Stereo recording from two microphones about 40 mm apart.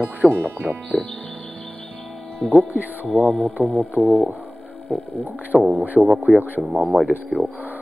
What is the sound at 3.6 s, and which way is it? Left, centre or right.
Speech, left.